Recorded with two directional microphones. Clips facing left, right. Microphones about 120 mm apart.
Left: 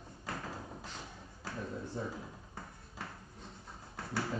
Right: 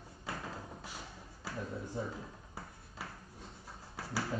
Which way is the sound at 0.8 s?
10° right (ahead or behind).